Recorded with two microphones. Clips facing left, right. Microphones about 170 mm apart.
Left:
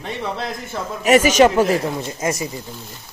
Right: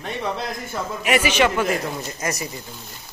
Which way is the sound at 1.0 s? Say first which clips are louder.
Left 7 dB; 40° left (ahead or behind).